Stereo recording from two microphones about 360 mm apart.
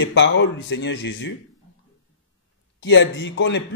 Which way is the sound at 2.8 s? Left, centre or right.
Left.